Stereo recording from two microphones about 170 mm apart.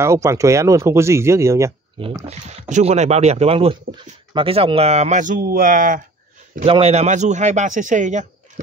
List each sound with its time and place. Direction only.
0.0 s speech: 15° right (ahead or behind)
2.0 s speech: 30° right (ahead or behind)
2.7 s speech: 40° right (ahead or behind)
6.6 s speech: 35° right (ahead or behind)